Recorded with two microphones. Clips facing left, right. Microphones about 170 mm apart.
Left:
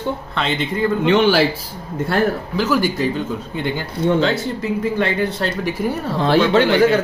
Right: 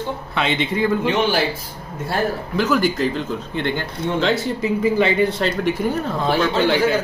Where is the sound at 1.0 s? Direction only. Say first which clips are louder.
Left 5 dB; 80° left.